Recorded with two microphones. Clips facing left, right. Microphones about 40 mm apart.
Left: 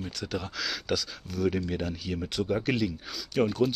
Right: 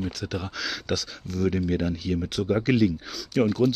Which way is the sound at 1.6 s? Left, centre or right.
Centre.